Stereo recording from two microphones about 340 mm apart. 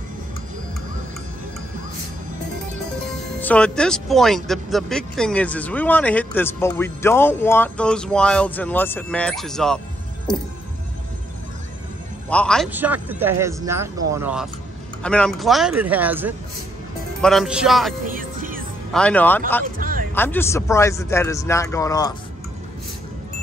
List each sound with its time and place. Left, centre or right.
3.3 s speech: centre
12.3 s speech: centre
18.0 s music: right
18.9 s speech: centre
19.6 s music: right
20.2 s a man's voice: centre